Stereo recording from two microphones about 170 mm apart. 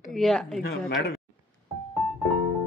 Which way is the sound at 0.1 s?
Centre (ahead or behind).